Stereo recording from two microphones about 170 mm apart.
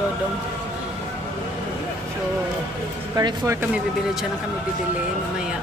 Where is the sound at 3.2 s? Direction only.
20° right (ahead or behind).